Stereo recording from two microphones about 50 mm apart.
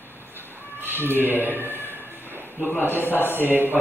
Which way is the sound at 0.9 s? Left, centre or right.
Right.